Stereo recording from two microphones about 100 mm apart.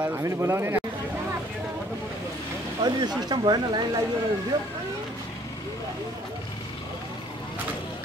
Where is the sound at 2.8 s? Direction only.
45° right (ahead or behind).